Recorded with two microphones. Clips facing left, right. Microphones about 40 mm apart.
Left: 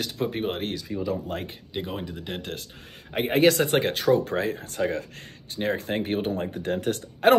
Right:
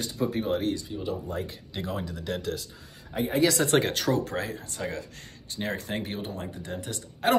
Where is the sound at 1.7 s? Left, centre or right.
Left.